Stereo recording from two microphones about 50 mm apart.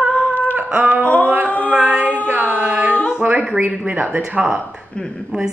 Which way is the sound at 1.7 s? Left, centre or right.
Right.